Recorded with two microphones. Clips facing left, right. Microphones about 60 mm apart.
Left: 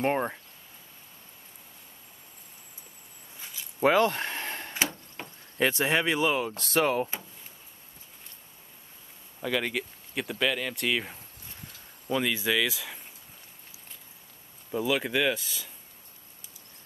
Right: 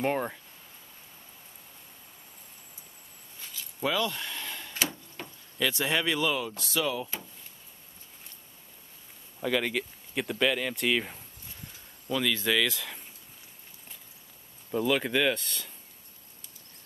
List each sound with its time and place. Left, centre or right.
0.0 s speech: centre
3.8 s a sound: left
5.2 s a sound: centre
5.6 s speech: left
6.6 s speech: left
9.4 s speech: centre
12.1 s speech: left
12.4 s speech: centre
14.7 s speech: centre